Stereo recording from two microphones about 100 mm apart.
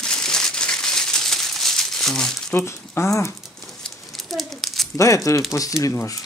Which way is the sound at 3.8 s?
Centre (ahead or behind).